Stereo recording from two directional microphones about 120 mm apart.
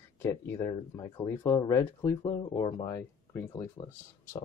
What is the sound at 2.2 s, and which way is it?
Speech, 40° left (ahead or behind).